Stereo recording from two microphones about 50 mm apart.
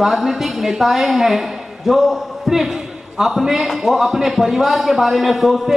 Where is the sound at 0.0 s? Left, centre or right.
Centre.